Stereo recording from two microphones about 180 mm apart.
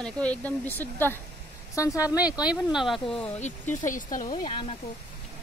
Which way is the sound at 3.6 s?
10° left (ahead or behind).